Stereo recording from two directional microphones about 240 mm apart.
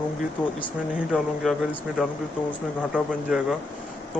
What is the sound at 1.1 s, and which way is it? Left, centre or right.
Speech, centre.